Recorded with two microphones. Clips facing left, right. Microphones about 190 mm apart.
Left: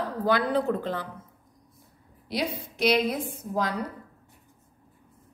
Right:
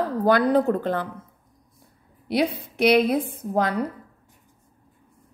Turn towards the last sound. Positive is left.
turn(degrees=-60)  # may be behind; listen again after turning